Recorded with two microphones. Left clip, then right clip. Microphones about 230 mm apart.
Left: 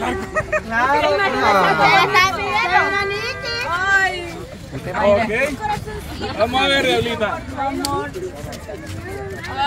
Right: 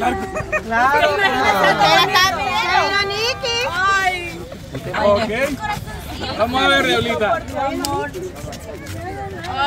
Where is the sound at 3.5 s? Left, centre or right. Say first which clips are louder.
Left 2 dB; right.